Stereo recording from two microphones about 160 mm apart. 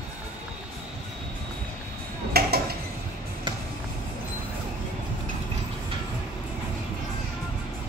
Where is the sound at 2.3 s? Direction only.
75° right (ahead or behind).